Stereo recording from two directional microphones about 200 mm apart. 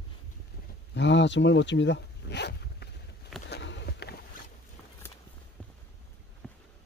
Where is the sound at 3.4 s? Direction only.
55° left (ahead or behind).